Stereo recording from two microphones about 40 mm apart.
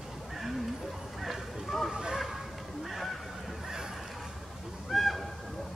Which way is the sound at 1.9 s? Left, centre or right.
Centre.